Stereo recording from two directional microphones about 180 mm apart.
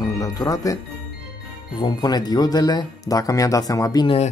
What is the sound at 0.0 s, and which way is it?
Music, 20° left (ahead or behind).